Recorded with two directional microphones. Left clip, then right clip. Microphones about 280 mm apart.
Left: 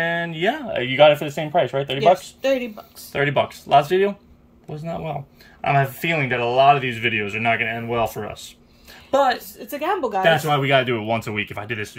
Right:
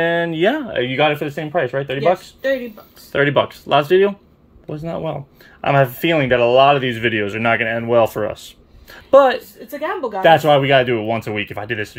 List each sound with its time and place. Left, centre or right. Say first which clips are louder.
0.0 s speech: right 5 dB; centre
2.0 s speech: left 2 dB; left
3.1 s speech: right 5 dB; centre